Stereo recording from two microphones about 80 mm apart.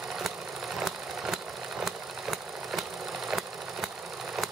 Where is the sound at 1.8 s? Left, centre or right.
Centre.